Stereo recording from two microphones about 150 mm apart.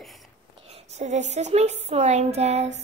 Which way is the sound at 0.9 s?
50° right (ahead or behind).